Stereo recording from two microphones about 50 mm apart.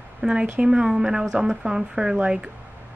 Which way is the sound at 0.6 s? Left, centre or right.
Centre.